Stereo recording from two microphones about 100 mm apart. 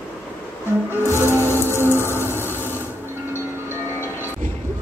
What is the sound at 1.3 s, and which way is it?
Music, 25° left (ahead or behind).